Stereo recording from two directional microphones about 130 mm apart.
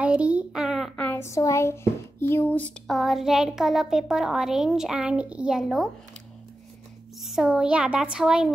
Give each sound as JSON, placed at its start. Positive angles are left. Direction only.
{"t": 0.0, "sound": "a sound", "side_deg": -10}
{"t": 1.0, "sound": "a child's voice", "side_deg": 20}
{"t": 2.9, "sound": "a child's voice", "side_deg": 0}
{"t": 7.2, "sound": "speech", "side_deg": -5}